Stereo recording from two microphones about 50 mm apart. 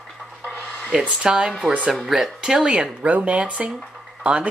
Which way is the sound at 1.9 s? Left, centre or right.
Centre.